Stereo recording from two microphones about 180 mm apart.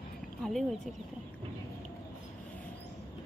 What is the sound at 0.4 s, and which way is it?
Speech, centre (ahead or behind).